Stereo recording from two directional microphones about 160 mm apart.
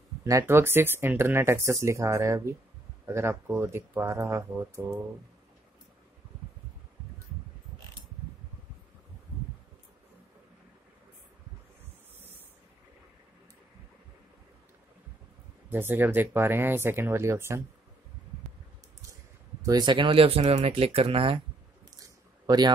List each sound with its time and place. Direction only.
0.2 s speech: 20° right (ahead or behind)
15.7 s speech: 10° right (ahead or behind)
19.6 s speech: 25° right (ahead or behind)
22.0 s a sound: 25° right (ahead or behind)